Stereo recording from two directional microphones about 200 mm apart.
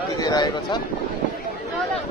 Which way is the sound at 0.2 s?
20° left (ahead or behind).